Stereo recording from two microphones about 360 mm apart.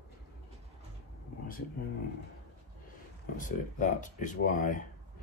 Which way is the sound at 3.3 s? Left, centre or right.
Left.